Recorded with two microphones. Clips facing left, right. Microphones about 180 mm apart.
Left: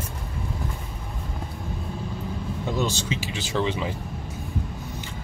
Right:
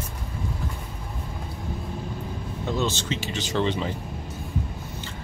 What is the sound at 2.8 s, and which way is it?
Speech, 10° left (ahead or behind).